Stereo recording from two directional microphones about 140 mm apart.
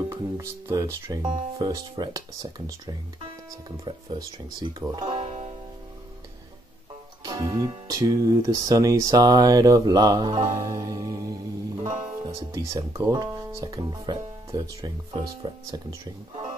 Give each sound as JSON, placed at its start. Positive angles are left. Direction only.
{"t": 0.1, "sound": "speech", "side_deg": -20}
{"t": 5.0, "sound": "music", "side_deg": -55}
{"t": 7.2, "sound": "speech", "side_deg": -30}
{"t": 12.5, "sound": "speech", "side_deg": -25}